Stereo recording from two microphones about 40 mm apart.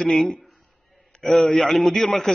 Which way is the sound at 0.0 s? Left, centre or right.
Centre.